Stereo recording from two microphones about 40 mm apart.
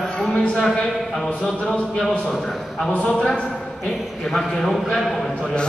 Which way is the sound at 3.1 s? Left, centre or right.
Left.